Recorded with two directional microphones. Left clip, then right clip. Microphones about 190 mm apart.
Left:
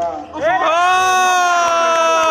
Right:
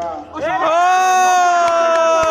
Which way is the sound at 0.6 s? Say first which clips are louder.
Right 2 dB; 20° right (ahead or behind).